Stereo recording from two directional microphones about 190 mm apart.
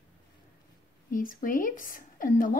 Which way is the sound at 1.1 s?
45° left (ahead or behind).